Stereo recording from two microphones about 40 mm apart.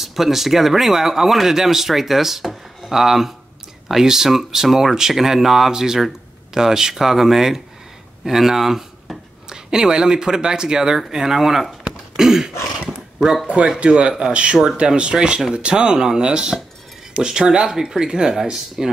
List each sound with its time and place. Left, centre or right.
0.0 s speech: centre
12.2 s a sound: centre
13.5 s speech: right